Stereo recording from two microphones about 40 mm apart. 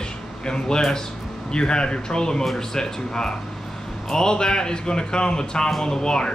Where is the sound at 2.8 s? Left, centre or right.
Centre.